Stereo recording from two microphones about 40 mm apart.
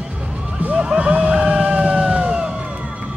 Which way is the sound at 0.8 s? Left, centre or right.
Right.